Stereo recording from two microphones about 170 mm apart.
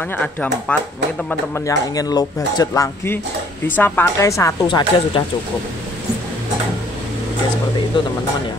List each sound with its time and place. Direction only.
0.1 s a woman's voice: 10° left (ahead or behind)
1.5 s a woman's voice: 20° left (ahead or behind)
4.6 s speech: 30° left (ahead or behind)